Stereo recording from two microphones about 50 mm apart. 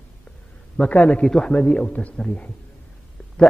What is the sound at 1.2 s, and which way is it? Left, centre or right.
A man's voice, centre.